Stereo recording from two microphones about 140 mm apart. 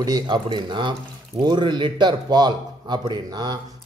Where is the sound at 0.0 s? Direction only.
30° right (ahead or behind).